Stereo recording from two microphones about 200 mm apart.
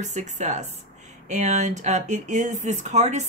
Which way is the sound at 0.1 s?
35° right (ahead or behind).